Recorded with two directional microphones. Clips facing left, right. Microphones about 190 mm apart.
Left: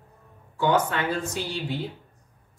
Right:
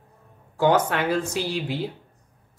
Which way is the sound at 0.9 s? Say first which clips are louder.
Right 4 dB; 75° right (ahead or behind).